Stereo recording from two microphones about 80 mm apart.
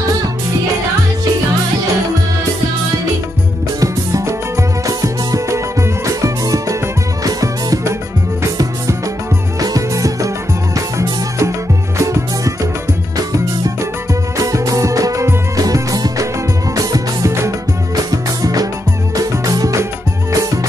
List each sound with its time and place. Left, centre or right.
3.8 s music: right
14.4 s music: right
17.9 s music: right